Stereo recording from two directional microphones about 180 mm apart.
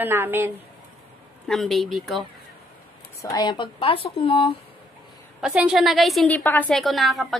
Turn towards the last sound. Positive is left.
turn(degrees=0)  # may be behind; listen again after turning